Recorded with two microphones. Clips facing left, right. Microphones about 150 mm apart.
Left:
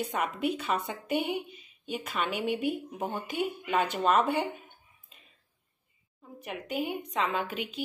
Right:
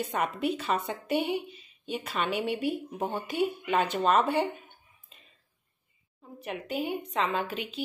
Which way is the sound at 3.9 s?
5° left (ahead or behind).